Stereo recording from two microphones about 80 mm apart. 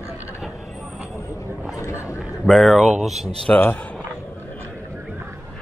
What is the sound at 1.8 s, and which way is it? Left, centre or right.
Chatter, left.